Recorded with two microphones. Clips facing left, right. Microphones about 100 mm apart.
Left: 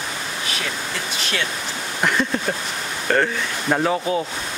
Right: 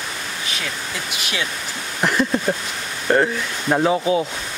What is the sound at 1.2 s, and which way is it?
Speech, 10° right (ahead or behind).